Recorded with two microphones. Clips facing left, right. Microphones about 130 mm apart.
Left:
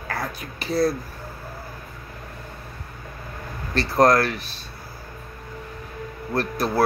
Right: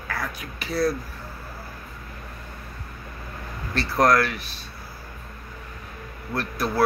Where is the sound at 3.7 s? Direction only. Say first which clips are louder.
Left 2 dB; 40° left (ahead or behind).